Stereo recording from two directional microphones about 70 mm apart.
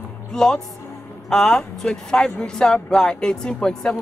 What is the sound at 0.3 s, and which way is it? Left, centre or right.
A woman's voice, centre.